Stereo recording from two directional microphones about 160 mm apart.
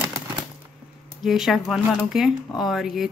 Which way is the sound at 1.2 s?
Centre (ahead or behind).